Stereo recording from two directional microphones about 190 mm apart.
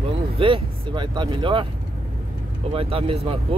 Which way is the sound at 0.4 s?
25° right (ahead or behind).